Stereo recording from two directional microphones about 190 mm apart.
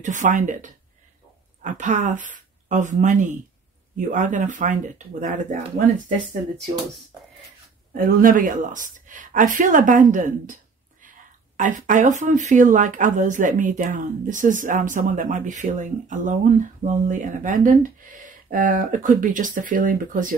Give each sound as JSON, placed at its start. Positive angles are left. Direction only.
{"t": 0.0, "sound": "speech", "side_deg": -40}
{"t": 7.9, "sound": "a woman's voice", "side_deg": -45}